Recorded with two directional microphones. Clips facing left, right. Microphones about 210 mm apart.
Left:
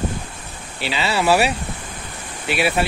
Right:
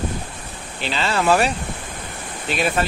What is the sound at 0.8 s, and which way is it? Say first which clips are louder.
Speech: even; 10° left (ahead or behind).